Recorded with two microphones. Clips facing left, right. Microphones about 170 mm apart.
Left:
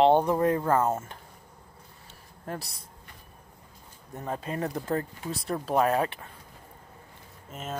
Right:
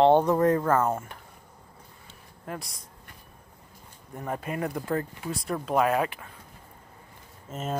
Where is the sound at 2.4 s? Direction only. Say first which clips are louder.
Left 1 dB; 35° left (ahead or behind).